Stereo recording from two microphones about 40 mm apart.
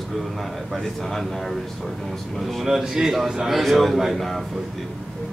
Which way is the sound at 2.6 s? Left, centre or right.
Centre.